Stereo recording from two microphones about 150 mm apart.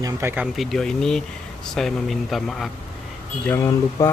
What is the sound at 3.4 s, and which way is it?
Speech, 15° left (ahead or behind).